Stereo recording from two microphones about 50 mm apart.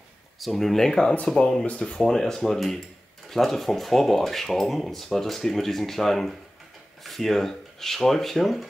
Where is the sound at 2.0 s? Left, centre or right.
Centre.